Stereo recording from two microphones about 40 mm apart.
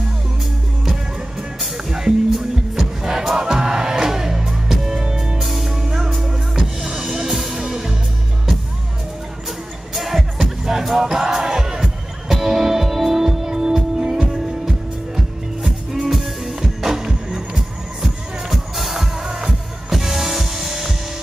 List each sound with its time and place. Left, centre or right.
1.9 s music: centre
5.4 s music: centre
7.2 s music: centre
9.9 s music: centre